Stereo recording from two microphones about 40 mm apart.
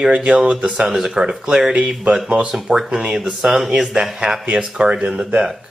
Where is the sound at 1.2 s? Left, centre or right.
Right.